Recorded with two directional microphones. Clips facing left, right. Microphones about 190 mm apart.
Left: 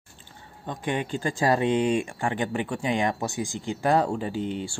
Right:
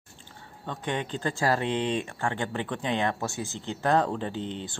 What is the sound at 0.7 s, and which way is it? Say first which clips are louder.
Speech: left 3 dB; 10° left (ahead or behind).